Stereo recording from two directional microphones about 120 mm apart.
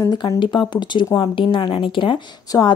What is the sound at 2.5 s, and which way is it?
Speech, 30° left (ahead or behind).